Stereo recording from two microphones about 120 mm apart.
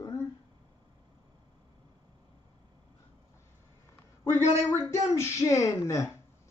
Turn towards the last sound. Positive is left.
turn(degrees=25)  # may be behind; listen again after turning